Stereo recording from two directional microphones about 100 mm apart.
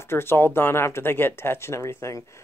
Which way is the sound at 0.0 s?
25° left (ahead or behind).